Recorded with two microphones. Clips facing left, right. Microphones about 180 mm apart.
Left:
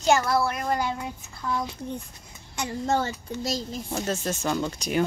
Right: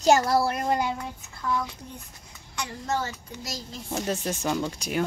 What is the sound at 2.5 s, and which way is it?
A child's voice, 25° left (ahead or behind).